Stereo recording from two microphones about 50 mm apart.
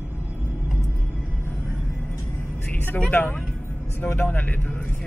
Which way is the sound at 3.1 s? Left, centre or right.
Left.